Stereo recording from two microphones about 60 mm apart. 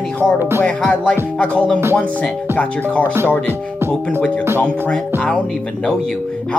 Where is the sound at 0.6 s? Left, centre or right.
Left.